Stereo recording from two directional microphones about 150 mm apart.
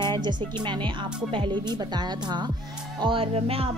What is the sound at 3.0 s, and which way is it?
Speech, 35° right (ahead or behind).